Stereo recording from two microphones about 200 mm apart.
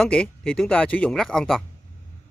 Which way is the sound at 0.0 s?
5° left (ahead or behind).